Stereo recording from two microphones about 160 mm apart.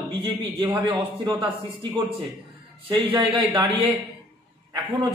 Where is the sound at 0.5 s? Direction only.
15° right (ahead or behind).